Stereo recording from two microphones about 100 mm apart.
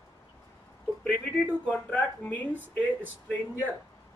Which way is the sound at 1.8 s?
15° left (ahead or behind).